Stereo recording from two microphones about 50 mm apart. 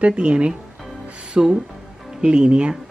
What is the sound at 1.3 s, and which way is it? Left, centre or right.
Speech, centre.